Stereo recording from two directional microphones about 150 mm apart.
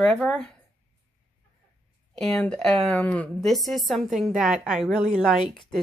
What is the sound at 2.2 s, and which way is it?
Speech, 5° left (ahead or behind).